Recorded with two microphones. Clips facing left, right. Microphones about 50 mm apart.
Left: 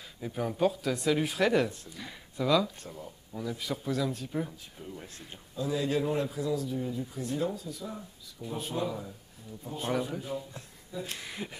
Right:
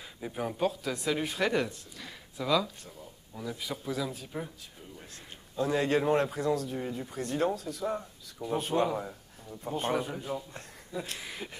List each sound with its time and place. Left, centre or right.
0.2 s speech: centre
5.6 s a man's voice: right
9.9 s speech: centre